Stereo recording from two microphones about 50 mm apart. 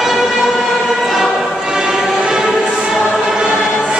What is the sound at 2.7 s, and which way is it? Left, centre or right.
Choir, centre.